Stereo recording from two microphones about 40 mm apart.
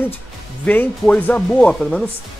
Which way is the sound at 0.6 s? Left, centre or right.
Left.